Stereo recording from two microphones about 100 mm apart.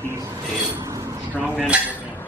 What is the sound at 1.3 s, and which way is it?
Dishes, 10° right (ahead or behind).